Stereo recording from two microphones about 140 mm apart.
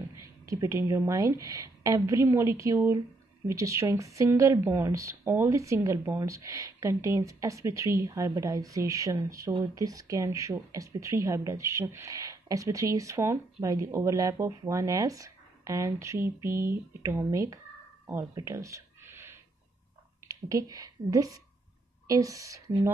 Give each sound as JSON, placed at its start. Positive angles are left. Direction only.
{"t": 0.5, "sound": "speech", "side_deg": -20}
{"t": 18.0, "sound": "a sound", "side_deg": -20}
{"t": 20.2, "sound": "a woman's voice", "side_deg": -25}